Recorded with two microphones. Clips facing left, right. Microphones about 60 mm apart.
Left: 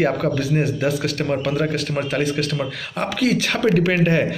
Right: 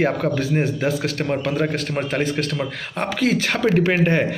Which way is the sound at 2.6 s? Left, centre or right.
Right.